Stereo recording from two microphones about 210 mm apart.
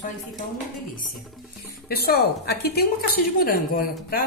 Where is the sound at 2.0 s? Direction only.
50° left (ahead or behind).